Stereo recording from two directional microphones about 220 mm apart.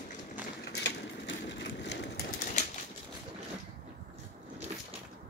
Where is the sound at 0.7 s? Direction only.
50° left (ahead or behind).